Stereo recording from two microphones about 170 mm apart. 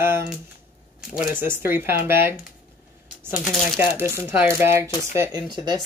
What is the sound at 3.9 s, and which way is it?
Speech, 15° right (ahead or behind).